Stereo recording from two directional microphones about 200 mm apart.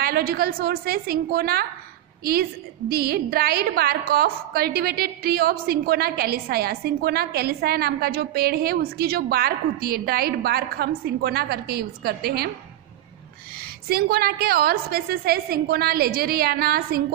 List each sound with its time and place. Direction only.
0.0 s a woman's voice: 50° right (ahead or behind)
2.9 s a woman's voice: 50° right (ahead or behind)
13.8 s a woman's voice: 50° right (ahead or behind)